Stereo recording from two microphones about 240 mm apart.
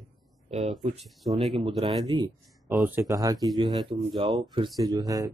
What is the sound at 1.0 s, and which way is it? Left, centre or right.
Speech, centre.